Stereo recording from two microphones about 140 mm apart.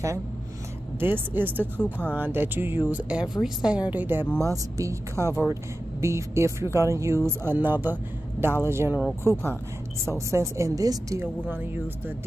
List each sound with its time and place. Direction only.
0.9 s speech: 15° right (ahead or behind)
1.8 s speech: 10° left (ahead or behind)
2.1 s speech: 15° right (ahead or behind)
11.4 s speech: 15° right (ahead or behind)